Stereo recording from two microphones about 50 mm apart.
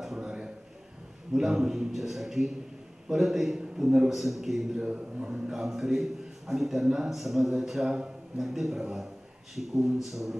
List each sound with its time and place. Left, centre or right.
0.0 s a sound: centre
1.3 s a man's voice: centre
4.8 s speech: centre
5.5 s a man's voice: centre